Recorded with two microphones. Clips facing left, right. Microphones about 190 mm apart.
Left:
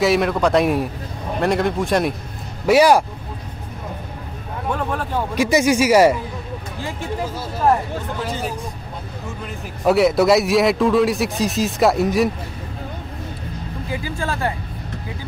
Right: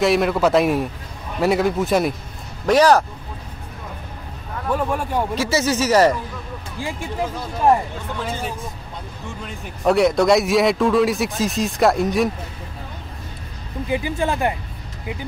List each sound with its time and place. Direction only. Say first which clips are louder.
0.0 s a man's voice: even; centre (ahead or behind)
2.6 s speech: left 1 dB; 10° left (ahead or behind)
4.7 s speech: right 3 dB; 10° right (ahead or behind)
5.3 s speech: left 7 dB; 15° left (ahead or behind)
9.4 s a man's voice: left 1 dB; centre (ahead or behind)
13.8 s speech: right 5 dB; 20° right (ahead or behind)